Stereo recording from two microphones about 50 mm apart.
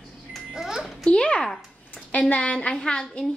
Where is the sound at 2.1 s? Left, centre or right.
Left; by 3.3 s centre.